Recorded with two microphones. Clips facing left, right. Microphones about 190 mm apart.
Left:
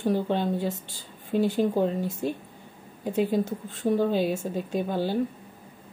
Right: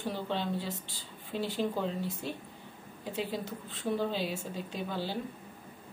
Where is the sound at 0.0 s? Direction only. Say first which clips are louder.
Left 9 dB; 50° left (ahead or behind).